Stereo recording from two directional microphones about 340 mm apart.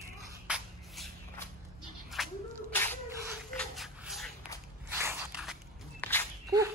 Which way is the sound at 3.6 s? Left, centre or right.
Centre.